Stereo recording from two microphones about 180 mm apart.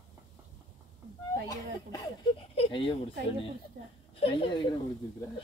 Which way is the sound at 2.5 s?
30° left (ahead or behind).